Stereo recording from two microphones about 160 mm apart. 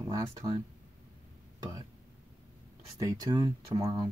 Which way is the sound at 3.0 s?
20° right (ahead or behind).